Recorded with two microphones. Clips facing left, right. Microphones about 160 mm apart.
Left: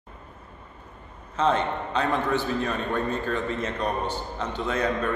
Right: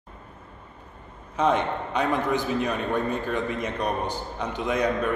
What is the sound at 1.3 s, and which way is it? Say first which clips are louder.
A man's voice: right 1 dB; 15° right (ahead or behind).